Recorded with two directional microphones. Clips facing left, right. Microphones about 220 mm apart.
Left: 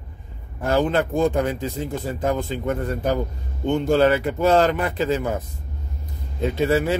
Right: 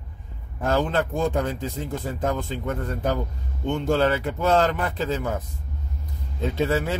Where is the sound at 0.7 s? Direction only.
10° left (ahead or behind).